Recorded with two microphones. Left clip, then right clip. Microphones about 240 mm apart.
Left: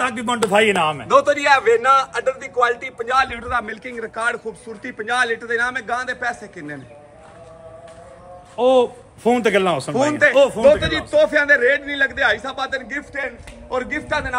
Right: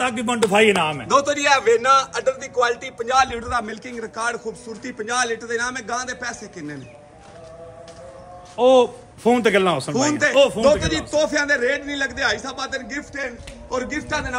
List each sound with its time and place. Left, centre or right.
0.0 s a man's voice: centre
1.0 s a man's voice: centre
8.5 s a man's voice: centre